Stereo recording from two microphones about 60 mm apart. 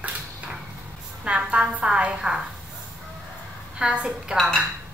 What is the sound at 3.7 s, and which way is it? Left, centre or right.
Speech, centre.